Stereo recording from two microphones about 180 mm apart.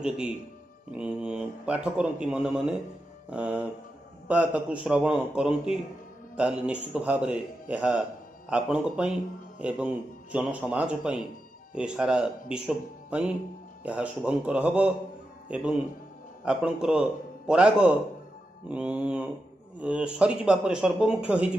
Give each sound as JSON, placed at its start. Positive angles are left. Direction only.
{"t": 0.9, "sound": "a man's voice", "side_deg": -5}